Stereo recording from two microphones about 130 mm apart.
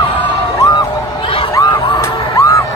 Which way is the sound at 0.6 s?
35° left (ahead or behind).